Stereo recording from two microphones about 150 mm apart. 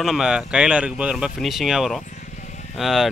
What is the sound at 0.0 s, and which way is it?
Speech, 5° right (ahead or behind).